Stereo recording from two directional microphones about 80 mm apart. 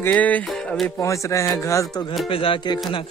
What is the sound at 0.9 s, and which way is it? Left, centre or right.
Speech, left.